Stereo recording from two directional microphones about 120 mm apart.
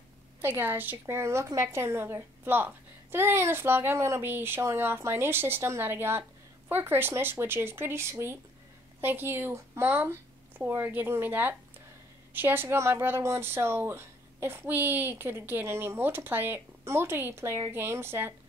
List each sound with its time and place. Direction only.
0.4 s speech: 15° right (ahead or behind)